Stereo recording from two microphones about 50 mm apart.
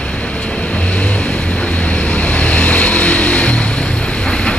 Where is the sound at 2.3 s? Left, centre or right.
Left.